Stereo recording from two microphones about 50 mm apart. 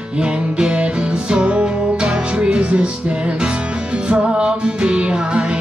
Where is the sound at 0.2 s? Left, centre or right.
Centre.